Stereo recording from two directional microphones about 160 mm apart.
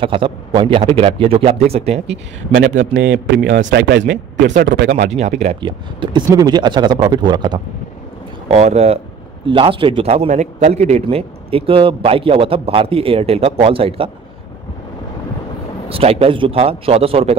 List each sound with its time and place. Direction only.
0.0 s a man's voice: 30° right (ahead or behind)
2.5 s speech: 55° right (ahead or behind)
3.1 s speech: 90° right
4.9 s speech: 45° right (ahead or behind)
5.6 s speech: 30° right (ahead or behind)
8.5 s a man's voice: 40° right (ahead or behind)
15.9 s a man's voice: 40° right (ahead or behind)